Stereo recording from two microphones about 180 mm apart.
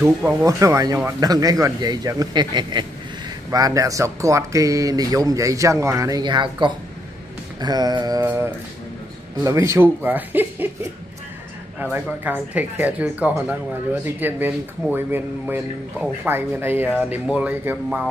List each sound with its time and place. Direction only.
0.0 s speech: 10° right (ahead or behind)
9.4 s speech: 15° right (ahead or behind)
11.8 s speech: 10° right (ahead or behind)